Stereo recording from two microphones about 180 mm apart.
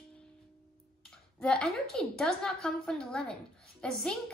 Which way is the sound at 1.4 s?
5° left (ahead or behind).